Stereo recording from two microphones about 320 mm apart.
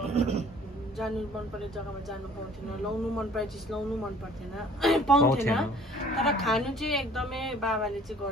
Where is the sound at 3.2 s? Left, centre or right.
Centre.